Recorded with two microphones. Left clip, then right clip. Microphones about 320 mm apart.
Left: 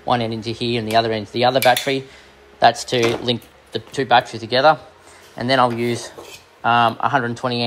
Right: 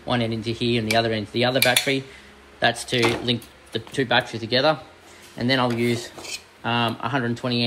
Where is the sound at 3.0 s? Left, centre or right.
Centre.